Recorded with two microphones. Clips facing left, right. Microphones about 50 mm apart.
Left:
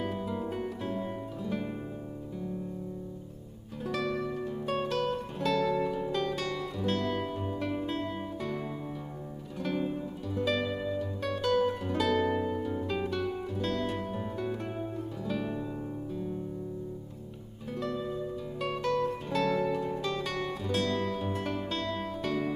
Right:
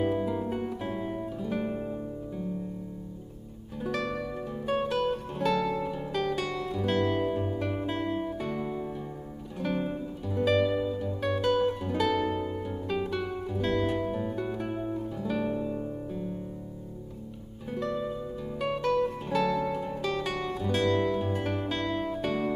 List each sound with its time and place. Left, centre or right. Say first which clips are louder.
0.0 s music: right 5 dB; centre
1.4 s guitar: right 3 dB; centre
3.8 s music: even; centre
6.8 s music: right 5 dB; centre
7.9 s guitar: right 4 dB; centre
9.6 s music: right 1 dB; centre
12.8 s guitar: right 1 dB; centre
13.6 s music: right 6 dB; right
14.1 s music: right 3 dB; centre
17.6 s music: right 3 dB; centre